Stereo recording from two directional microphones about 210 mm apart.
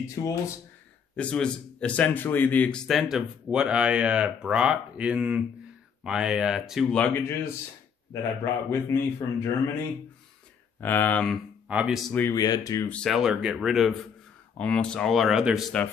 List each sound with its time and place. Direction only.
0.1 s speech: 15° left (ahead or behind)
1.1 s speech: 5° left (ahead or behind)
8.6 s speech: 15° left (ahead or behind)
10.8 s speech: 10° left (ahead or behind)
12.1 s speech: 10° left (ahead or behind)
12.9 s speech: centre (ahead or behind)